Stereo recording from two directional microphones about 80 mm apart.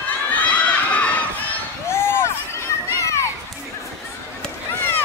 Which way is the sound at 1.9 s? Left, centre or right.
Left.